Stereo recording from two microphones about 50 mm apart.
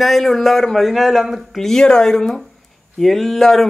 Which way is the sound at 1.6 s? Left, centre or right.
Centre.